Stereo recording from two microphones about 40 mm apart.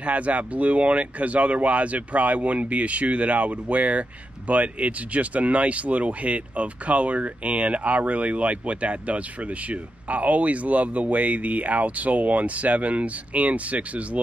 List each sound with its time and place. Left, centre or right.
0.0 s speech: right